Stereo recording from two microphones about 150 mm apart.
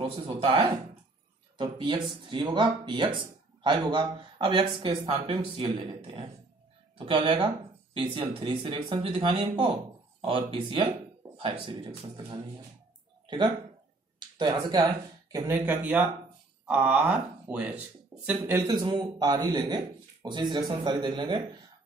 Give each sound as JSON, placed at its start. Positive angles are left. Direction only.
{"t": 0.0, "sound": "speech", "side_deg": -35}
{"t": 14.4, "sound": "speech", "side_deg": -30}
{"t": 18.7, "sound": "speech", "side_deg": -30}